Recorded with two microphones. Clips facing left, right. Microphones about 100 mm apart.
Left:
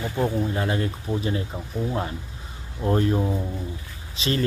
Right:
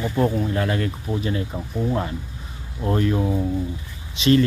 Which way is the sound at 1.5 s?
5° right (ahead or behind).